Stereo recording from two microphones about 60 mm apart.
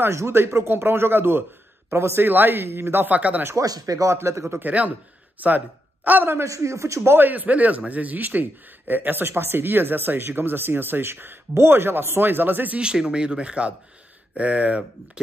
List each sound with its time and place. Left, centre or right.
0.0 s speech: right
3.1 s speech: right
3.5 s speech: right
4.6 s speech: right
6.0 s speech: right
6.4 s speech: right
7.2 s speech: right
12.8 s speech: centre